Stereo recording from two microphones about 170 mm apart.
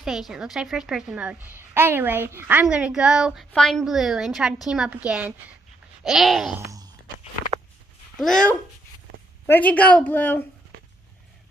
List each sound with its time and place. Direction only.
0.0 s a woman's voice: 5° right (ahead or behind)
6.6 s a sound: 20° right (ahead or behind)
8.2 s a woman's voice: 5° left (ahead or behind)